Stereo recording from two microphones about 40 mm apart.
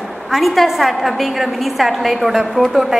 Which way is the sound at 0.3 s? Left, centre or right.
Centre.